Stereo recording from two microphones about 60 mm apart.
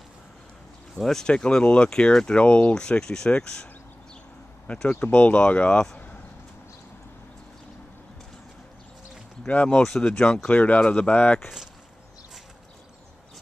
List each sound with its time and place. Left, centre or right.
0.9 s speech: centre
4.8 s speech: left
9.4 s speech: left
9.8 s speech: centre